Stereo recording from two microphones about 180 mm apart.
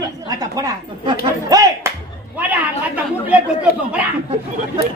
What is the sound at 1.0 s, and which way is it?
Speech, 20° right (ahead or behind).